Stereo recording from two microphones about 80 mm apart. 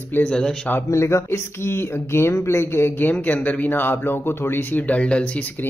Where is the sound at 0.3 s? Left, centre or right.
Centre.